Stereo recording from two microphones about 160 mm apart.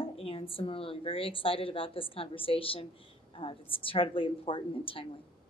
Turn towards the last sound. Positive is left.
turn(degrees=35)  # may be behind; listen again after turning